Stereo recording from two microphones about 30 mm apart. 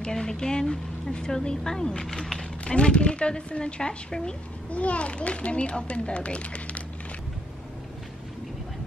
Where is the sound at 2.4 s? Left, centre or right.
Left.